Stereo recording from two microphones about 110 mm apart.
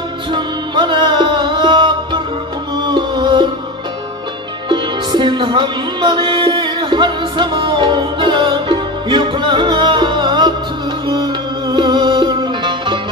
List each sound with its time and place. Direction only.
0.3 s music: 45° right (ahead or behind)
4.6 s music: 45° right (ahead or behind)
11.7 s music: 45° right (ahead or behind)